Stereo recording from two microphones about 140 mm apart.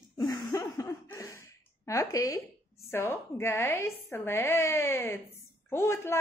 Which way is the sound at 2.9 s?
20° left (ahead or behind).